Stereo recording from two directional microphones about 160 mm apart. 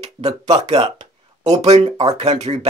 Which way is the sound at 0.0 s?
40° right (ahead or behind).